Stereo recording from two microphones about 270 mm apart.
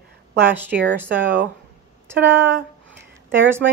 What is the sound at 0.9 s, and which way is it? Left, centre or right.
Speech, centre.